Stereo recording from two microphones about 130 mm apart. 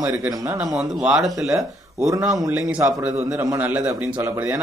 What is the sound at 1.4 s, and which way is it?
Speech, 25° right (ahead or behind).